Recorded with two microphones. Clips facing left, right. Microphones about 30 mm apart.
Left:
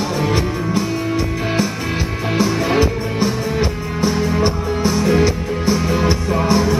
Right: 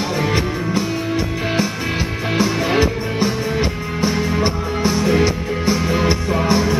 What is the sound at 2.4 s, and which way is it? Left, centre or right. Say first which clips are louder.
Music: left 1 dB; centre.